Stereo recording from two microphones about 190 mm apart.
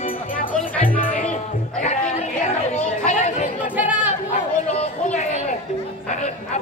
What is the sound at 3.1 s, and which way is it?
Chatter, 40° left (ahead or behind).